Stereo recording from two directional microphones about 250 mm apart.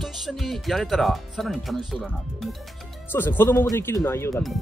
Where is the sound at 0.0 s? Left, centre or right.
Centre.